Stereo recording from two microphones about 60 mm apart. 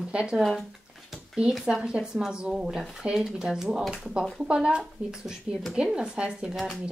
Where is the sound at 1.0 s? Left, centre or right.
Centre.